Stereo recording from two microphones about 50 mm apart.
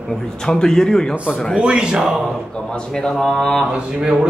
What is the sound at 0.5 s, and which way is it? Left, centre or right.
Speech, centre.